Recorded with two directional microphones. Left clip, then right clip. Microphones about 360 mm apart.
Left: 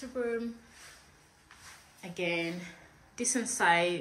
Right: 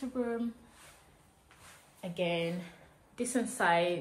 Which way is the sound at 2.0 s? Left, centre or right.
Centre.